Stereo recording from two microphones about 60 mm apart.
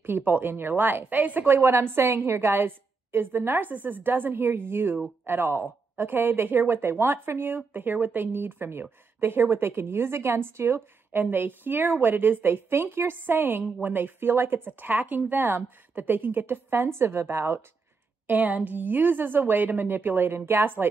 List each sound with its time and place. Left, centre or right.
0.0 s speech: right
1.6 s speech: right
11.2 s speech: right
18.2 s speech: right